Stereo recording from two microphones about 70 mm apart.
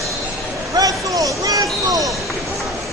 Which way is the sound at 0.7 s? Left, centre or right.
Right.